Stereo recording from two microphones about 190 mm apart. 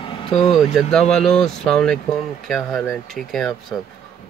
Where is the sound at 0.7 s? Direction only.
Centre (ahead or behind).